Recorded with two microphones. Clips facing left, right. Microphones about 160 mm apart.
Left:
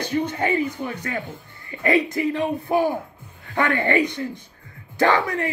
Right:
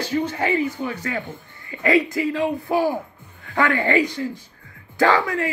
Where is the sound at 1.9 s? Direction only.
20° left (ahead or behind).